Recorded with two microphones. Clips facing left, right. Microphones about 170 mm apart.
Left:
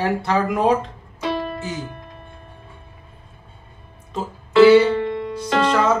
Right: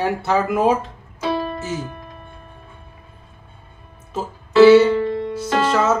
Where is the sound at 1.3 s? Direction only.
35° right (ahead or behind).